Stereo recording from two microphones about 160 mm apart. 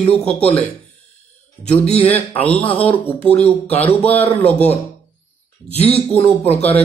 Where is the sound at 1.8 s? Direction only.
40° left (ahead or behind).